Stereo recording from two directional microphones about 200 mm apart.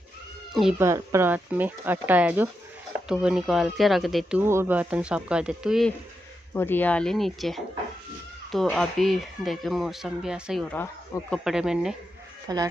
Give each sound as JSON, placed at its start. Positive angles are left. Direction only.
{"t": 0.5, "sound": "speech", "side_deg": 0}
{"t": 0.7, "sound": "speech", "side_deg": -15}
{"t": 4.4, "sound": "speech", "side_deg": -10}
{"t": 6.5, "sound": "speech", "side_deg": 10}
{"t": 12.5, "sound": "speech", "side_deg": -20}